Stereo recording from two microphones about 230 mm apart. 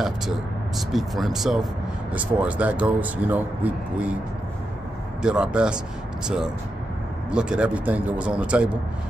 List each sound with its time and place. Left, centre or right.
0.7 s speech: centre
5.2 s speech: centre